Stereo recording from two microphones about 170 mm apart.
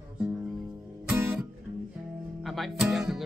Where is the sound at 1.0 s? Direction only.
15° right (ahead or behind).